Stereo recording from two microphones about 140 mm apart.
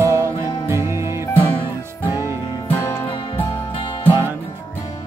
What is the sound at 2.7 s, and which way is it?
Music, 20° left (ahead or behind).